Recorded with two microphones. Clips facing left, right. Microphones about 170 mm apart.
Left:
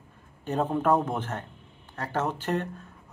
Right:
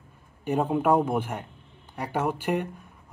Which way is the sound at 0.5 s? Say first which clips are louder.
Right 2 dB; 10° right (ahead or behind).